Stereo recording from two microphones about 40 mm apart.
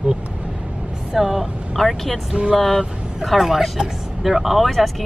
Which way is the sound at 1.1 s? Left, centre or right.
Centre.